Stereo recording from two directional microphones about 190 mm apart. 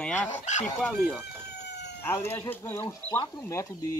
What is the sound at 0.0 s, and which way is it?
Speech, 5° left (ahead or behind).